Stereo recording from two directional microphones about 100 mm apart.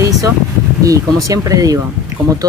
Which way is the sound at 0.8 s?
35° right (ahead or behind).